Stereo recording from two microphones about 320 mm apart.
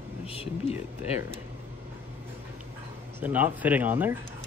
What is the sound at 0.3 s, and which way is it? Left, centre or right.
Speech, centre.